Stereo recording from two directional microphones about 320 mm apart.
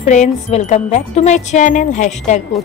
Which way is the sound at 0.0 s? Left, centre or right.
Left.